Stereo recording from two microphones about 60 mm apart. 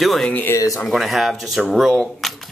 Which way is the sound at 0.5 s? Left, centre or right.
Left.